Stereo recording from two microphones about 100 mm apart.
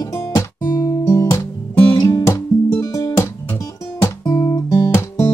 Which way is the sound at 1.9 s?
35° left (ahead or behind).